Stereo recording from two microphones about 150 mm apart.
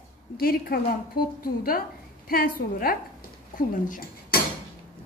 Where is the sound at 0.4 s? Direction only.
80° left.